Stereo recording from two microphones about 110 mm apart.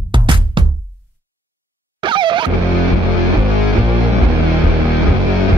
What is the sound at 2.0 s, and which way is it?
Music, 45° right (ahead or behind).